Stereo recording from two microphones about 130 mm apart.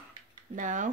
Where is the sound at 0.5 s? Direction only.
75° right (ahead or behind).